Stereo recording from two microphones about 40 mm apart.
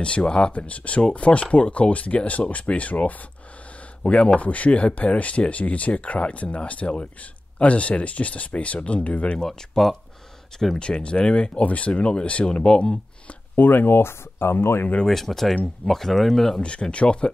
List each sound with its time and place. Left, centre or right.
0.0 s speech: left
3.7 s a sound: left
4.4 s speech: left
9.4 s speech: centre
10.8 s speech: left
11.6 s speech: left
13.6 s speech: left
15.0 s speech: centre
16.6 s speech: left